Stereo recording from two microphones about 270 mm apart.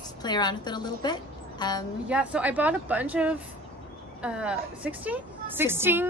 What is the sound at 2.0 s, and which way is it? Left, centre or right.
A woman's voice, centre.